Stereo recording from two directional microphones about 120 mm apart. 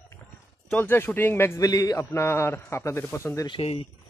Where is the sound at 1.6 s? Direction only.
30° left (ahead or behind).